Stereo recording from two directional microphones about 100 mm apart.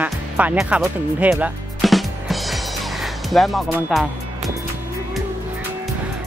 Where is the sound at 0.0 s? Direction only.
15° right (ahead or behind).